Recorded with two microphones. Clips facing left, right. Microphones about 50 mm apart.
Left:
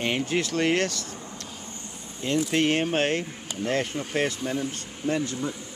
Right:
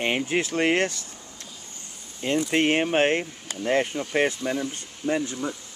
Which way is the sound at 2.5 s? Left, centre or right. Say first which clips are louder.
Right 3 dB; right.